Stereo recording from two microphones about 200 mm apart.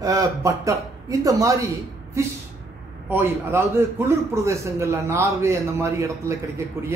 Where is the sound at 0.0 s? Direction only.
15° right (ahead or behind).